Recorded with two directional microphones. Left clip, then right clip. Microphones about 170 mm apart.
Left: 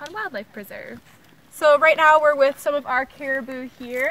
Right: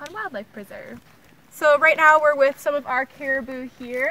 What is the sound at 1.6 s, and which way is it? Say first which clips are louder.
A woman's voice: left 1 dB; 10° right (ahead or behind).